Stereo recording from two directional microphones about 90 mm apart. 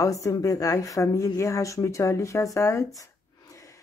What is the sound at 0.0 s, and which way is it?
Speech, 35° left (ahead or behind).